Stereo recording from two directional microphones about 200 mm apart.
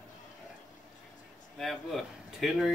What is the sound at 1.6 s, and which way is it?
Speech, centre (ahead or behind).